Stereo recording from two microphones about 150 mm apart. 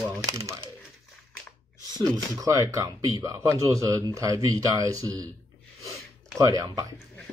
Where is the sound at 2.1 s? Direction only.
20° right (ahead or behind).